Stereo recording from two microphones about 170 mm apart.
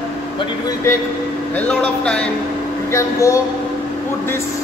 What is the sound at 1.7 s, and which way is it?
Speech, 5° left (ahead or behind).